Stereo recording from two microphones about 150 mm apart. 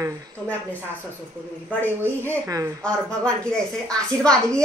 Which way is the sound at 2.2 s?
20° right (ahead or behind).